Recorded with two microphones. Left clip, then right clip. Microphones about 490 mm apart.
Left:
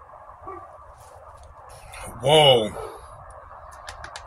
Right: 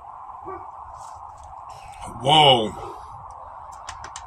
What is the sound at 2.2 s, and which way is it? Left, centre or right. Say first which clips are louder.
Speech: right 1 dB; left.